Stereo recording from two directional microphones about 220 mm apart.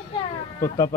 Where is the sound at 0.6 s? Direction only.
15° left (ahead or behind).